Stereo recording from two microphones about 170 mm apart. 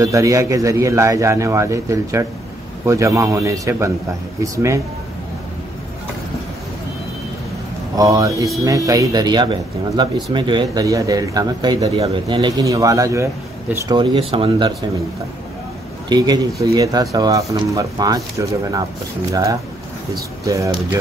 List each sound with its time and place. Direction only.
0.0 s a man's voice: 20° right (ahead or behind)
7.9 s speech: 20° right (ahead or behind)
16.1 s speech: 25° right (ahead or behind)